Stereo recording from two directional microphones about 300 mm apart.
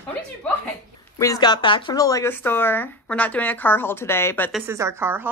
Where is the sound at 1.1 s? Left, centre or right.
Centre.